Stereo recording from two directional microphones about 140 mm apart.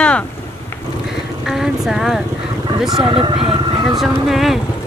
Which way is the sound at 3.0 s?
40° right (ahead or behind).